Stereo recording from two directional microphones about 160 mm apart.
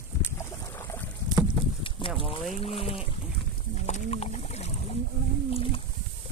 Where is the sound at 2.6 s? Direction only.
35° left (ahead or behind).